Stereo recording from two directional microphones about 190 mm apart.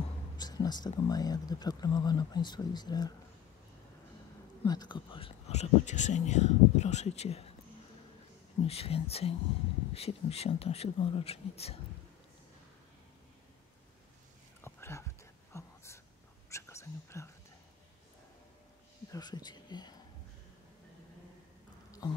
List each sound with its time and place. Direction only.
0.4 s speech: 20° left (ahead or behind)
4.6 s speech: 25° left (ahead or behind)
8.6 s speech: 30° left (ahead or behind)
14.6 s a sound: 15° left (ahead or behind)
15.5 s whispering: 15° left (ahead or behind)
19.1 s speech: 20° left (ahead or behind)